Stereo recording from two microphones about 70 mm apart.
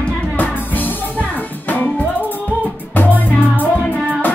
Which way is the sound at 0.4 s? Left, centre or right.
Left.